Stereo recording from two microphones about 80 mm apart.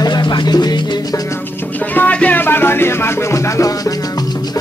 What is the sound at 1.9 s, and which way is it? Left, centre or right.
Music, centre.